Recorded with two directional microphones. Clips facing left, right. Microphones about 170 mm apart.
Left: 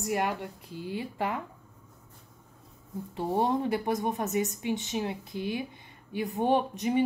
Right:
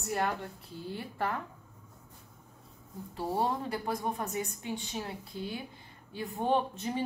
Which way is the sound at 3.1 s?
20° left (ahead or behind).